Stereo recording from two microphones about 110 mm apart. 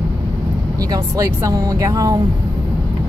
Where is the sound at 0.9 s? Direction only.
30° right (ahead or behind).